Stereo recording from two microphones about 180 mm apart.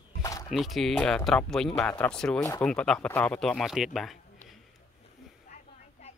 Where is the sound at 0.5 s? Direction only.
Centre (ahead or behind).